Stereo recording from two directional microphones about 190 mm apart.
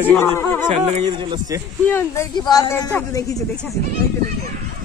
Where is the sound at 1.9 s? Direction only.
10° left (ahead or behind).